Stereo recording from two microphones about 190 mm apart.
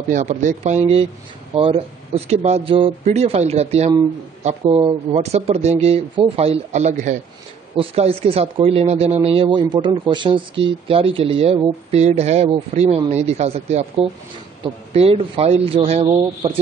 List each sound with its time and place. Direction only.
0.1 s speech: 40° right (ahead or behind)